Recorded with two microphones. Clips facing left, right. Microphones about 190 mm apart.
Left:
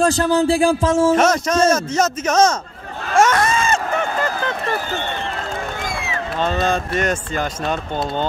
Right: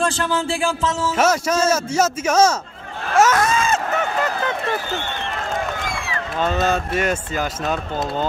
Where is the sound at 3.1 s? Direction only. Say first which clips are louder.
Left 1 dB; 5° right (ahead or behind).